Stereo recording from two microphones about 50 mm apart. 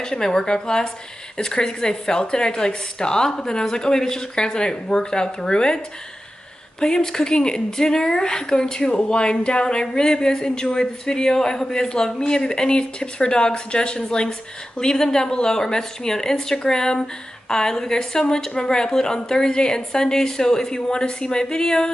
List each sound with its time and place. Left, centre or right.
0.0 s speech: centre
6.8 s speech: centre